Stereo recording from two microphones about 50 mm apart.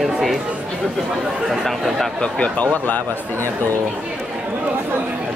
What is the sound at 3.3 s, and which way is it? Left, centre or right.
Speech, right.